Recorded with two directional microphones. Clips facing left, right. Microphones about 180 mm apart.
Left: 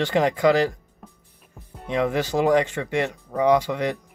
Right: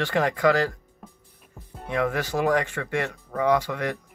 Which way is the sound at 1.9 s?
20° left (ahead or behind).